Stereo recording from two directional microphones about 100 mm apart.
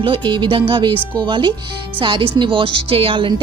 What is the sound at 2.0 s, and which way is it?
A woman's voice, 60° right (ahead or behind).